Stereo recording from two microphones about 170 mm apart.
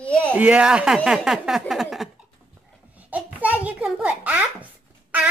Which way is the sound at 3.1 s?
10° right (ahead or behind).